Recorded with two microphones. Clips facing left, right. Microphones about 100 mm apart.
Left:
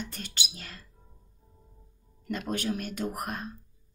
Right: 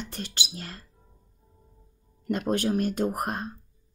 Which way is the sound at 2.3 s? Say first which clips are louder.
Right 6 dB; 45° right (ahead or behind).